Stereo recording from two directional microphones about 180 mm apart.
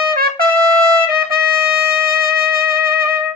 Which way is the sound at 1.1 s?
55° right (ahead or behind).